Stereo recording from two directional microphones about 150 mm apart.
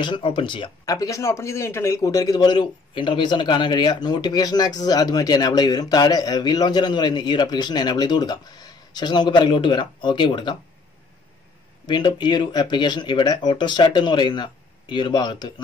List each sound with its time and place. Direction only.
0.0 s speech: 35° left (ahead or behind)
11.8 s speech: 30° left (ahead or behind)